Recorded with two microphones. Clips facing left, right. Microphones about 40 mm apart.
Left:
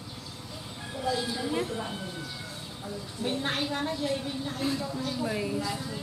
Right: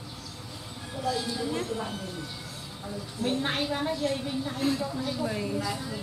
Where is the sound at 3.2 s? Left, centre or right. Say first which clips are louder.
Right 2 dB; centre.